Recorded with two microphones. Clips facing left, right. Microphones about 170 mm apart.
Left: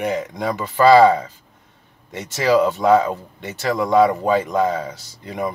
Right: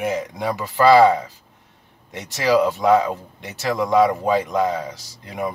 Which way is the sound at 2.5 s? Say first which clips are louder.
Left 1 dB; centre (ahead or behind).